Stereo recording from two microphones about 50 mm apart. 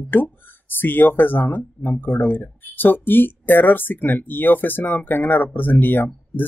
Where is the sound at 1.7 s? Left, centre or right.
Left.